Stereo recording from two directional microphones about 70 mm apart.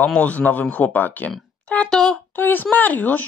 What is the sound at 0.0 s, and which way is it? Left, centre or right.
Speech, centre.